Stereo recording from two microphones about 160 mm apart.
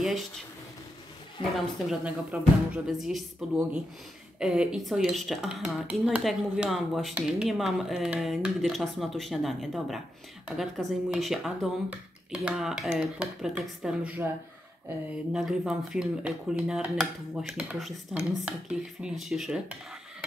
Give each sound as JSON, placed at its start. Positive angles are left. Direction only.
{"t": 1.4, "sound": "a woman's voice", "side_deg": 35}
{"t": 1.9, "sound": "speech", "side_deg": -5}
{"t": 15.3, "sound": "speech", "side_deg": -5}